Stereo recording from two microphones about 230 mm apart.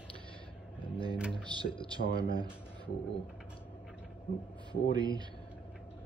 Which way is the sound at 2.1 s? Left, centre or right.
Left.